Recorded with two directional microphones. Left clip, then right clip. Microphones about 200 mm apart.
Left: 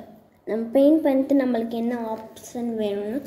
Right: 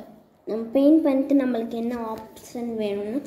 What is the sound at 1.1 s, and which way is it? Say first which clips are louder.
Speech: left 1 dB; 30° left (ahead or behind).